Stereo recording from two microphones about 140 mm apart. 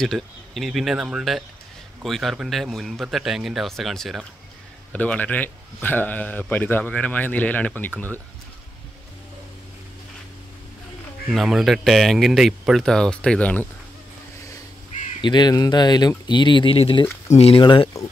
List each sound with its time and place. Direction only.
0.0 s a man's voice: centre (ahead or behind)
11.3 s speech: centre (ahead or behind)
15.2 s speech: 30° left (ahead or behind)